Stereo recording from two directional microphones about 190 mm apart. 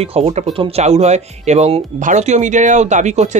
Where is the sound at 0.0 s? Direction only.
30° right (ahead or behind).